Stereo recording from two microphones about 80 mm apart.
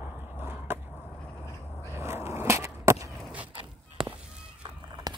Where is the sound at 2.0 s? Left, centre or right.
Right.